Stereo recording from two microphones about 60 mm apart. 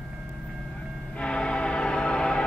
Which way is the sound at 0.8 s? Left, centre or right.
Centre.